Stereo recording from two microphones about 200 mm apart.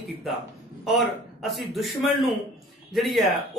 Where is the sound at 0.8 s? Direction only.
Centre (ahead or behind).